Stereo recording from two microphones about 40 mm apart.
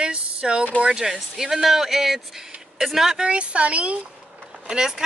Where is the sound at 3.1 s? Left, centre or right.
Right.